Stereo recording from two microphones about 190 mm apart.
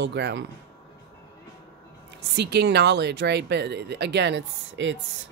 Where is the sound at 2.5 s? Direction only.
60° right (ahead or behind).